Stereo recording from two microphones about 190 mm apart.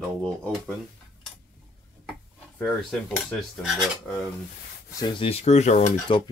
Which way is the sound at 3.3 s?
Centre (ahead or behind).